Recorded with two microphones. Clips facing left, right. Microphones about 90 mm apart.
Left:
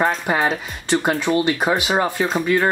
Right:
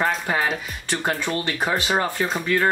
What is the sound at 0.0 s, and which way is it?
Speech, 20° left (ahead or behind).